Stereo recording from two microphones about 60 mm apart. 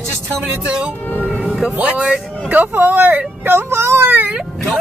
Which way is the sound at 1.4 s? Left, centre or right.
Centre.